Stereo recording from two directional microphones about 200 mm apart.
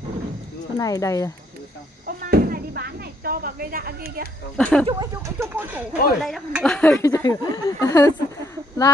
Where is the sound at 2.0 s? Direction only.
50° right (ahead or behind).